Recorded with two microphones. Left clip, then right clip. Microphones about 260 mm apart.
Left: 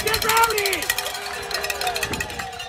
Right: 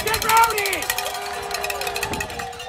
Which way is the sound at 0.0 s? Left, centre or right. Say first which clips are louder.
Right 2 dB; right.